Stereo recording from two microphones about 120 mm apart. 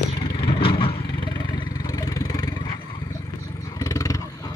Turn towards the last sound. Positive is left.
turn(degrees=25)  # may be behind; listen again after turning